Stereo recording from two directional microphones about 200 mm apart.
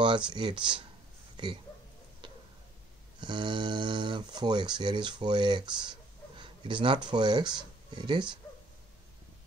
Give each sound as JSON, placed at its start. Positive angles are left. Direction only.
{"t": 0.0, "sound": "speech", "side_deg": -25}
{"t": 1.3, "sound": "a sound", "side_deg": -25}
{"t": 3.2, "sound": "speech", "side_deg": -25}